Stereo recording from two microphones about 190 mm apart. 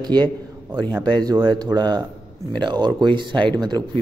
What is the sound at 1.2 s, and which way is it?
Speech, 20° right (ahead or behind).